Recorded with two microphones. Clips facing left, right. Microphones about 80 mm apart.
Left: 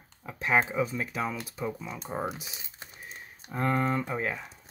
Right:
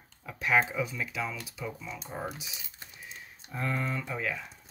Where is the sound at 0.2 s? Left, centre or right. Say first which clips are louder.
Left 1 dB; left.